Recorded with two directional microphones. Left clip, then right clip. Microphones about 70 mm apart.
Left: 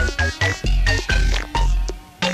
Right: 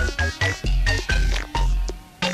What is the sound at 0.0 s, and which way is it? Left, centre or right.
Music, right.